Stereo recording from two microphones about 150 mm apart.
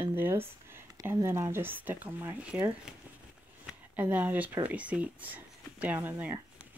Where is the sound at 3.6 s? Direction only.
10° right (ahead or behind).